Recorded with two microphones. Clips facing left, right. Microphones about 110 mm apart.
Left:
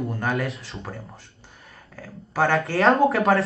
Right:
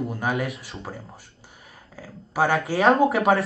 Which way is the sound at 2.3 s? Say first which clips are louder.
Even; 10° right (ahead or behind).